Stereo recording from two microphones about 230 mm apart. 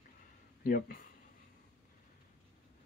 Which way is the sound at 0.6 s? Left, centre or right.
Left.